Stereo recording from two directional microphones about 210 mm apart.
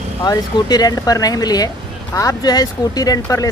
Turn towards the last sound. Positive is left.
turn(degrees=15)  # may be behind; listen again after turning